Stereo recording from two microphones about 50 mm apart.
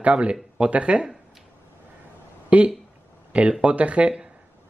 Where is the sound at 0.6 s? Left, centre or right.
Right.